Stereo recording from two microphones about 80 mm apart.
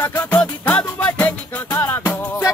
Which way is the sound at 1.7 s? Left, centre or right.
Left.